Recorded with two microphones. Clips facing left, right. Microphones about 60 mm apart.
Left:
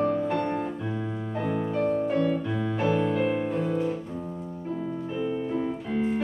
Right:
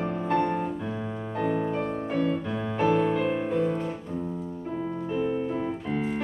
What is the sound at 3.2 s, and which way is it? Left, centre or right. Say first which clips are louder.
Music: right 1 dB; centre.